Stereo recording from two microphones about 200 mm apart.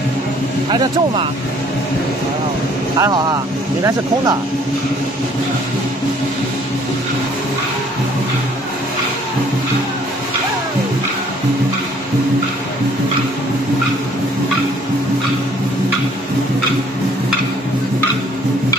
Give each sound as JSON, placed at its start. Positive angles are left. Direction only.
{"t": 0.7, "sound": "speech", "side_deg": -25}
{"t": 3.0, "sound": "speech", "side_deg": -20}